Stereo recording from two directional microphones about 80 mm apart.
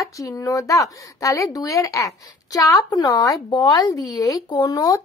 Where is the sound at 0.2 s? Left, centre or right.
Left.